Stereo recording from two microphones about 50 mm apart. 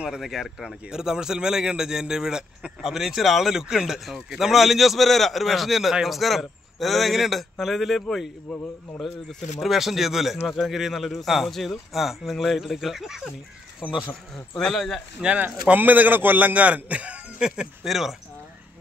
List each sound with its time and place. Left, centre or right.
0.2 s speech: centre
13.8 s speech: left
14.6 s speech: centre
15.2 s speech: centre
15.7 s a man's voice: right
17.4 s speech: centre
17.8 s speech: centre